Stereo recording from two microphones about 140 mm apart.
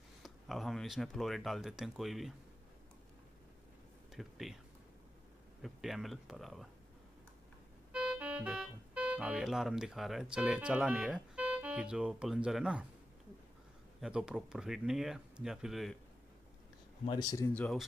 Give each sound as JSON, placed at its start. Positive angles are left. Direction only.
{"t": 0.2, "sound": "speech", "side_deg": 0}
{"t": 4.1, "sound": "speech", "side_deg": 0}
{"t": 5.6, "sound": "speech", "side_deg": 0}
{"t": 7.9, "sound": "speech", "side_deg": -10}
{"t": 14.0, "sound": "speech", "side_deg": -5}
{"t": 17.0, "sound": "speech", "side_deg": 30}
{"t": 17.6, "sound": "speech", "side_deg": 5}